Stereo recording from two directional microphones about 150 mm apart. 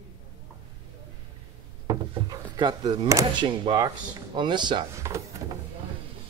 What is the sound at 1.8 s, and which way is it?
Speech, 30° right (ahead or behind).